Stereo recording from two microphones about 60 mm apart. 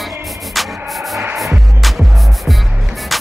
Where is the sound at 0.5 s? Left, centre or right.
Centre.